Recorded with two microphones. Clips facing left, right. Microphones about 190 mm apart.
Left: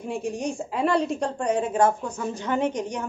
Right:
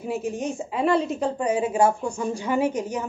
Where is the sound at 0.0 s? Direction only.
5° right (ahead or behind).